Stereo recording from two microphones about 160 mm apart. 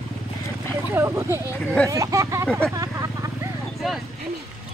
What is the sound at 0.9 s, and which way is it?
Speech, 15° right (ahead or behind).